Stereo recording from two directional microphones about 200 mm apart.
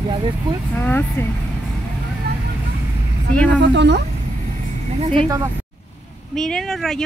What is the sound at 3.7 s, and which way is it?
Speech, 60° right (ahead or behind).